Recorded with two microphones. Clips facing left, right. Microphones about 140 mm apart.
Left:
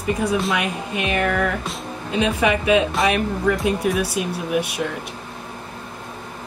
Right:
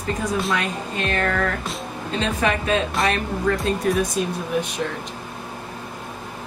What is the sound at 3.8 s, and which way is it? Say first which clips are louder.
Speech: even; 5° left (ahead or behind).